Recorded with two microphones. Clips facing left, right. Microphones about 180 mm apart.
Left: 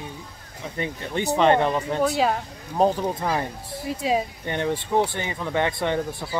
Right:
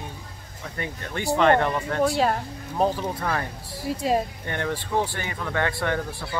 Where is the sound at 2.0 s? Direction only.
Centre (ahead or behind).